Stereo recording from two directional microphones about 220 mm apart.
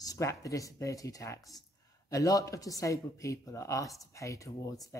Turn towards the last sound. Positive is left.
turn(degrees=15)  # may be behind; listen again after turning